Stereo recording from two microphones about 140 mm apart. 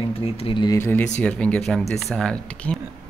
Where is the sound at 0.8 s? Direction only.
15° left (ahead or behind).